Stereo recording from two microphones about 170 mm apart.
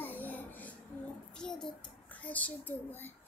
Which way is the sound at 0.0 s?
10° left (ahead or behind).